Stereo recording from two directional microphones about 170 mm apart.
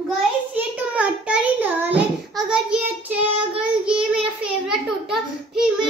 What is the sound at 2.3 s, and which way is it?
Child singing, 5° right (ahead or behind).